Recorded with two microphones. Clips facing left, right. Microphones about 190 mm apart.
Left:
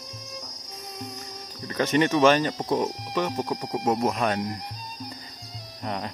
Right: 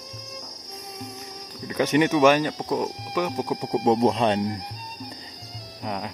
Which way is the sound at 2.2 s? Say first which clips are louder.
Right 1 dB; 10° right (ahead or behind).